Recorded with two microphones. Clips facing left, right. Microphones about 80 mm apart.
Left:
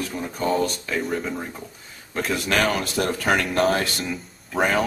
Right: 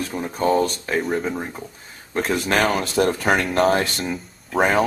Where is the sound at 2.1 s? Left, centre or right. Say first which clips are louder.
Right 3 dB; right.